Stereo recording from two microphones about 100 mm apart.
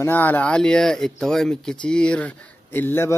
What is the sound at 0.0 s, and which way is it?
Speech, 20° left (ahead or behind).